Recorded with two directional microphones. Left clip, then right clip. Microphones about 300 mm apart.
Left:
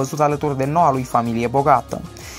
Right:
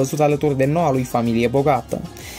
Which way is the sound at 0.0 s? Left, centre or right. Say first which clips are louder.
Right 1 dB; centre.